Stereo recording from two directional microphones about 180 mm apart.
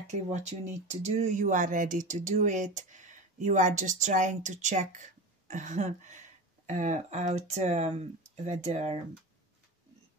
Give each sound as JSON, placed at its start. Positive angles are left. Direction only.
{"t": 0.0, "sound": "speech", "side_deg": -40}